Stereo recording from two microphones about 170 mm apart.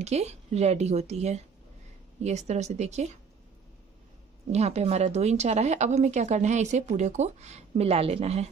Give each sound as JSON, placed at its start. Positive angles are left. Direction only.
{"t": 0.0, "sound": "a woman's voice", "side_deg": -40}
{"t": 4.5, "sound": "a woman's voice", "side_deg": -40}